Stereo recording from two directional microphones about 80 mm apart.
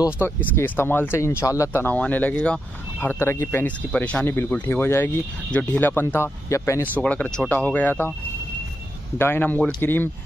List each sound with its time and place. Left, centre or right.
0.2 s speech: left
1.9 s speech: centre
3.0 s speech: left
3.6 s speech: centre
5.5 s speech: centre; by 6.8 s left
7.0 s speech: centre
9.2 s speech: left